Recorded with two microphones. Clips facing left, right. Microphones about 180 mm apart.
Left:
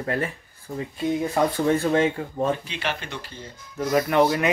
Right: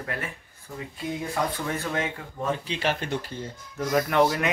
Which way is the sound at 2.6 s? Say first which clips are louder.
Right 3 dB; 45° right (ahead or behind).